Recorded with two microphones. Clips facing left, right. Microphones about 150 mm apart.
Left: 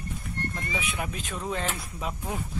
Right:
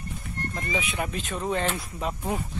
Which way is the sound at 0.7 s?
Centre (ahead or behind).